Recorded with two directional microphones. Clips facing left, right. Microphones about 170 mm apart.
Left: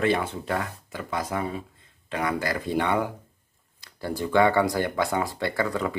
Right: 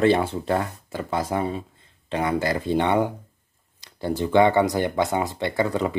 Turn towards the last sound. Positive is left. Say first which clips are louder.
# right 3 dB
turn(degrees=-25)  # may be behind; listen again after turning